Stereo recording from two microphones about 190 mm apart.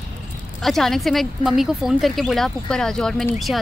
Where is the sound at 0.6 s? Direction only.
Centre (ahead or behind).